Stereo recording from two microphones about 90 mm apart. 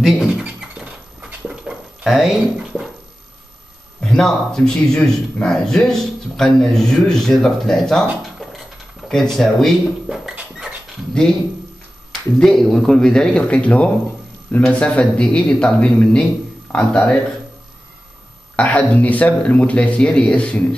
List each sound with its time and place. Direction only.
0.0 s a sound: 10° right (ahead or behind)
2.0 s speech: centre (ahead or behind)
4.0 s speech: 5° left (ahead or behind)
12.4 s speech: 5° left (ahead or behind)
18.6 s speech: 15° left (ahead or behind)